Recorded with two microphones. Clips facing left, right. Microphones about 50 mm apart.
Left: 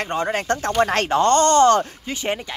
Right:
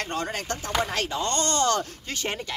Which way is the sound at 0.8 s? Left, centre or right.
Left.